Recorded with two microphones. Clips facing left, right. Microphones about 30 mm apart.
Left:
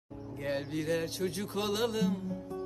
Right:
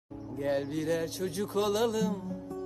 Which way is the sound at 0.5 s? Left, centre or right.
Centre.